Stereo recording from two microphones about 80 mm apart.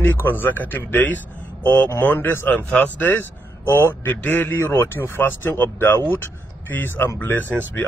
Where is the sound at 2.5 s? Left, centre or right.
Centre.